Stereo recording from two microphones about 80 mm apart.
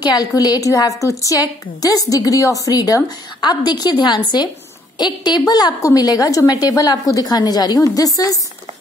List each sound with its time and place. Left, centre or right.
0.0 s a woman's voice: left
3.3 s a woman's voice: left
5.8 s a woman's voice: left